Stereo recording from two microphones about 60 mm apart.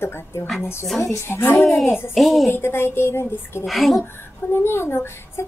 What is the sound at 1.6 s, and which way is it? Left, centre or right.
Speech, centre.